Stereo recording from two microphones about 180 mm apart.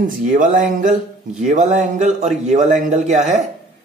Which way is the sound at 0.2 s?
45° right (ahead or behind).